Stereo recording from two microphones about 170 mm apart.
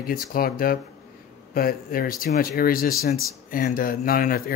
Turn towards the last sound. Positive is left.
turn(degrees=60)  # may be behind; listen again after turning